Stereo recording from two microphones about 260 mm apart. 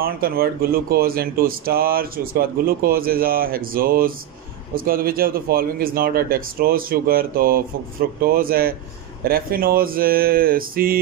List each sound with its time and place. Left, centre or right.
0.0 s speech: right